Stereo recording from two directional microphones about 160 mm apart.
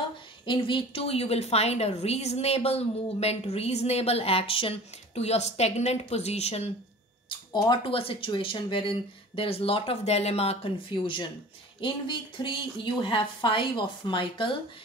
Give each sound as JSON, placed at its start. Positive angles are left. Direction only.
{"t": 0.5, "sound": "a woman's voice", "side_deg": 35}
{"t": 7.2, "sound": "a woman's voice", "side_deg": 25}